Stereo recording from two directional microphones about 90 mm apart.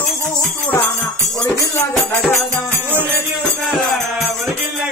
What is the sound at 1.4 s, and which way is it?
Music, 35° left (ahead or behind).